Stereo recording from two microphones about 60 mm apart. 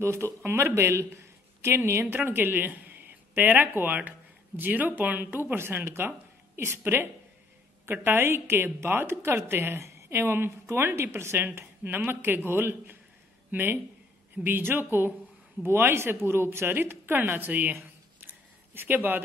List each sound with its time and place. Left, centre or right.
0.0 s a man's voice: right
2.1 s speech: right
10.5 s speech: right
11.4 s speech: right